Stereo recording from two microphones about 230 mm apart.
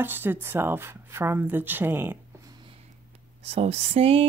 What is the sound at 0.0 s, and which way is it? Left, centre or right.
A woman's voice, centre.